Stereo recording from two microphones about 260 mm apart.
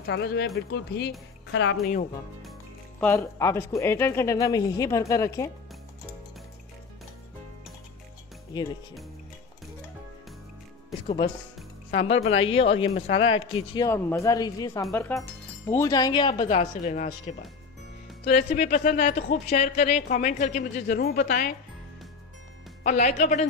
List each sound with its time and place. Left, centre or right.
0.0 s speech: left
3.0 s a man's voice: centre
12.2 s a woman's voice: left
16.3 s a woman's voice: left
18.2 s a woman's voice: left
22.8 s a woman's voice: left